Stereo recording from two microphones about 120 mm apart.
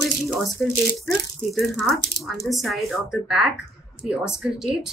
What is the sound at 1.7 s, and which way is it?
A woman's voice, centre (ahead or behind).